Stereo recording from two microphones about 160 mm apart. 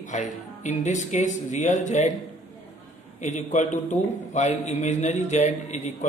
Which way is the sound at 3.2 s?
45° left (ahead or behind).